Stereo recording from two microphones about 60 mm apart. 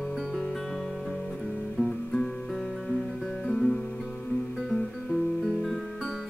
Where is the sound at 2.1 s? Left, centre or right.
Centre.